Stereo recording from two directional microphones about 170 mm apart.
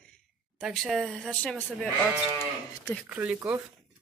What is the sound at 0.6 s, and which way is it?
Speech, centre (ahead or behind).